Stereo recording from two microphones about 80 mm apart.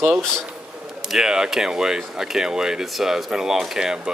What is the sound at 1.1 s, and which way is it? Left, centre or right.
Speech, centre.